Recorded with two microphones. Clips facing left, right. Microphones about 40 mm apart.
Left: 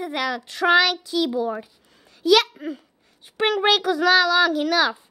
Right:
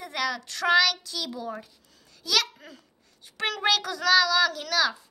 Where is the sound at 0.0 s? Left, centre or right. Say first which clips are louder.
Left 4 dB; centre.